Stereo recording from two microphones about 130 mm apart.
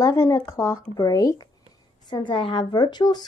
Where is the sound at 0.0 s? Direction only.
25° left (ahead or behind).